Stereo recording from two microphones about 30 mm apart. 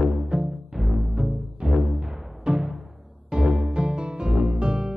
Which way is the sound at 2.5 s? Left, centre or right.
Right.